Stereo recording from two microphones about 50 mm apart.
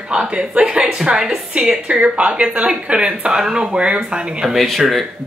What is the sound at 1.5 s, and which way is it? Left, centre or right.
Speech, right.